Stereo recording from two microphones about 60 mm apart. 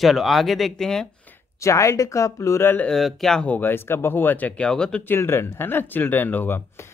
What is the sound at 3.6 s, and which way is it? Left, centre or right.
Speech, left.